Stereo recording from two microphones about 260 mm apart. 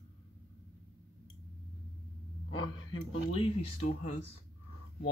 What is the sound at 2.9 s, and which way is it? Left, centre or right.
Speech, centre.